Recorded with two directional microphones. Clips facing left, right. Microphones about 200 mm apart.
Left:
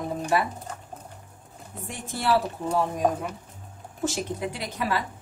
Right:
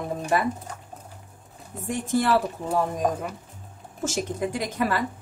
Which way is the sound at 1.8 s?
50° right (ahead or behind).